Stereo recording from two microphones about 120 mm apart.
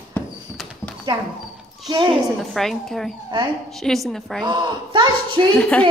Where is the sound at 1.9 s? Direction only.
40° right (ahead or behind).